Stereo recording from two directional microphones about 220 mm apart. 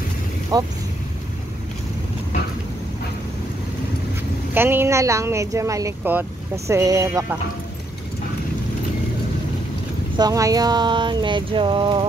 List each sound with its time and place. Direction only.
0.5 s speech: 15° right (ahead or behind)
4.6 s speech: 10° right (ahead or behind)
10.1 s speech: 15° right (ahead or behind)